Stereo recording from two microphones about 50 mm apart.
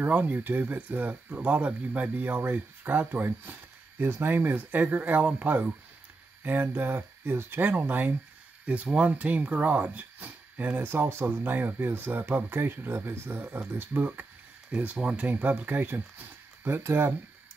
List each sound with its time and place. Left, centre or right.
0.0 s speech: right
6.4 s speech: right
8.6 s speech: right
10.8 s speech: right
11.4 s speech: right
14.7 s speech: right
16.6 s speech: right